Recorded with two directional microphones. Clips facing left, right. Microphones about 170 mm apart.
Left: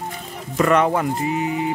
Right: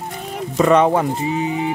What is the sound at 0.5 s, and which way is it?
Speech, 20° right (ahead or behind).